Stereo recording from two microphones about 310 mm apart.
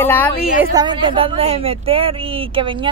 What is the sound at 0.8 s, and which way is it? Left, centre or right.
A woman's voice, centre.